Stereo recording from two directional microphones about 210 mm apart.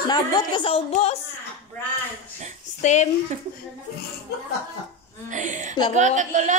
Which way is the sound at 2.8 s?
35° left (ahead or behind).